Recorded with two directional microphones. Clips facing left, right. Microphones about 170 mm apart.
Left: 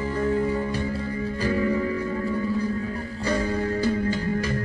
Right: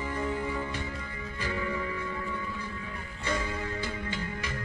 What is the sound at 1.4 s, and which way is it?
Music, 35° left (ahead or behind).